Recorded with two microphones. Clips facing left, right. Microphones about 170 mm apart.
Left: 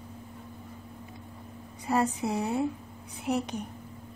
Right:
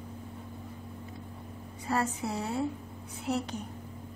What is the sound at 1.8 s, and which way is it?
A woman's voice, 15° left (ahead or behind).